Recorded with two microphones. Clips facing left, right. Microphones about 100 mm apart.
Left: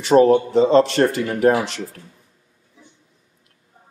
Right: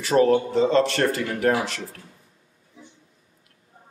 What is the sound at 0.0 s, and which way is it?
A man's voice, 20° left (ahead or behind).